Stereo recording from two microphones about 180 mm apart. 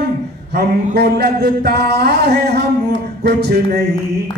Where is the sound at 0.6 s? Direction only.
60° right (ahead or behind).